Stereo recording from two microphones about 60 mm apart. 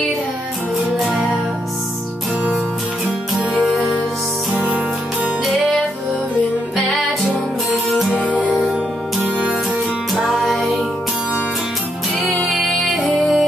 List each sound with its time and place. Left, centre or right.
0.9 s music: centre
3.5 s music: centre
4.5 s music: centre
10.2 s music: centre
12.4 s music: centre